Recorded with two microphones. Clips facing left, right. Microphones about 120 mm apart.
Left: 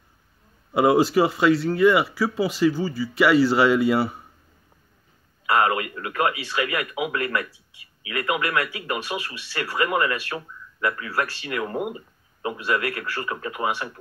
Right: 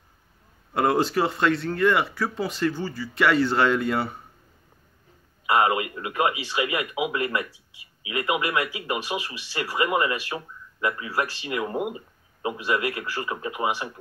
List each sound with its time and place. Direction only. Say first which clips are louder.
0.7 s speech: left 4 dB; 5° left (ahead or behind)
5.5 s speech: even; 20° right (ahead or behind)